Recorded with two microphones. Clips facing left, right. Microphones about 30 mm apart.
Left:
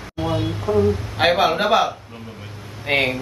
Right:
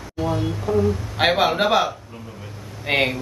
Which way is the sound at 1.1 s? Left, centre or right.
Centre.